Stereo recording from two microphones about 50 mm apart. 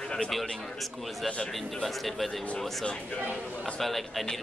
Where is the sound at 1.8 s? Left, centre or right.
Centre.